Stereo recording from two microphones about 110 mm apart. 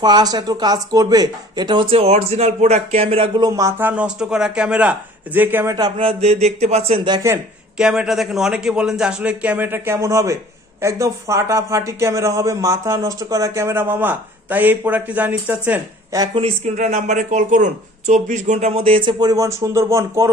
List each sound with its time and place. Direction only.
0.0 s speech: 40° right (ahead or behind); by 3.3 s 60° right (ahead or behind)
3.3 s a man's voice: 30° right (ahead or behind)
5.9 s speech: 65° right (ahead or behind)
7.2 s a man's voice: 25° right (ahead or behind)
7.7 s a man's voice: 5° right (ahead or behind)
16.1 s a man's voice: 30° right (ahead or behind)
16.6 s speech: 90° right; by 20.2 s 25° right (ahead or behind)